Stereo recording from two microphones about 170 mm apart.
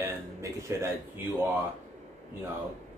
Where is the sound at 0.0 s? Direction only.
15° right (ahead or behind).